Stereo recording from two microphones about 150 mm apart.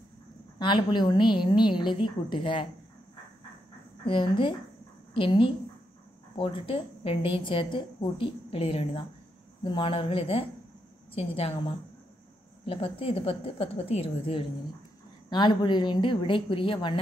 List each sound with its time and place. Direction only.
0.6 s a woman's voice: 30° left (ahead or behind)
4.0 s a woman's voice: 35° left (ahead or behind)